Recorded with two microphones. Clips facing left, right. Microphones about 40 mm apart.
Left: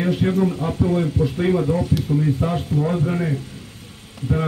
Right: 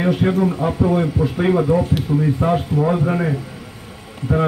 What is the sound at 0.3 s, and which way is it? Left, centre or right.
A man's voice, right.